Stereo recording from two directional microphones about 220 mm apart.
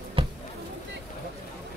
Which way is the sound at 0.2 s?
25° right (ahead or behind).